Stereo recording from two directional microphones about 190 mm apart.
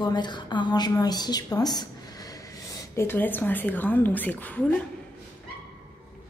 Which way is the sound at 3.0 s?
10° left (ahead or behind).